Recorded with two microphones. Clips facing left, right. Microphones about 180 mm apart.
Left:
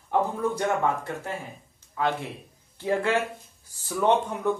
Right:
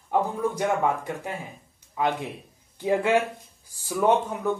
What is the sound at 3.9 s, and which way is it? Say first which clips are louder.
Speech: right 1 dB; centre (ahead or behind).